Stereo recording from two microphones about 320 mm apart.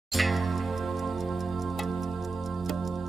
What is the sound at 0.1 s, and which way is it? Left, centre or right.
Music, centre.